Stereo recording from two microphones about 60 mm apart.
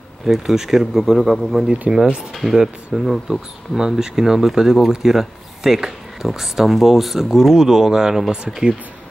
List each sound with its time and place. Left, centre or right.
0.2 s speech: centre
1.7 s speech: centre